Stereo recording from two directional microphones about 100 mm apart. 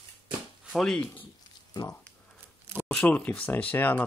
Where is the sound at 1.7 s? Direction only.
40° left (ahead or behind).